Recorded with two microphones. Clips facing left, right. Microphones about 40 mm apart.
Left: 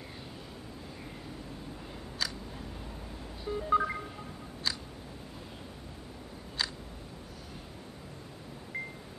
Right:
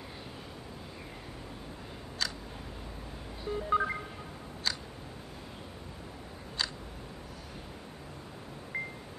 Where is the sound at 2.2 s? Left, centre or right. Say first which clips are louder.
Even; centre.